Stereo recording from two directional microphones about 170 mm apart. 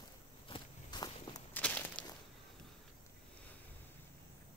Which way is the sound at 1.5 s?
10° left (ahead or behind).